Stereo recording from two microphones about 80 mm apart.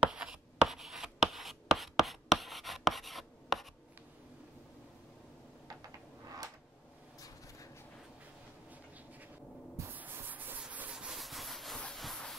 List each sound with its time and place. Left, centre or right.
0.0 s writing: centre
9.9 s music: right
10.6 s a sound: centre
11.9 s train: centre